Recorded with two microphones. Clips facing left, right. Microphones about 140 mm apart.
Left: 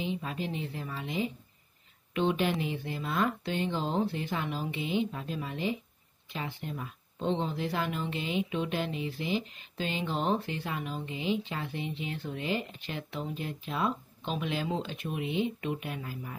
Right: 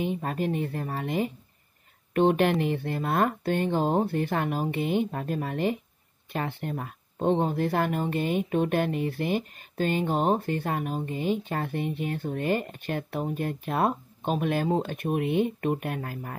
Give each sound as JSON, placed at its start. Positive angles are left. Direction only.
{"t": 0.0, "sound": "speech", "side_deg": -50}